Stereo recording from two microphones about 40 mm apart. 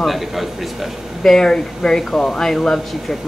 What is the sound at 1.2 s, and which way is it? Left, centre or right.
Speech, centre.